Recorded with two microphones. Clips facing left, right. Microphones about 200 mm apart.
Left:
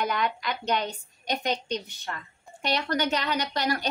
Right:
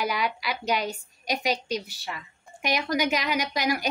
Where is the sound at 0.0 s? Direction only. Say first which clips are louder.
Even; 5° right (ahead or behind).